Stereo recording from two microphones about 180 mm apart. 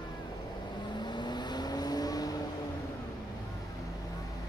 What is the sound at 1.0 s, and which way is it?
Vehicle, 25° left (ahead or behind).